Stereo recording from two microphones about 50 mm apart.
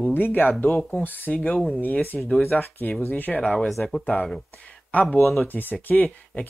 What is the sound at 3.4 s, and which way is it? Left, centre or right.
Speech, centre.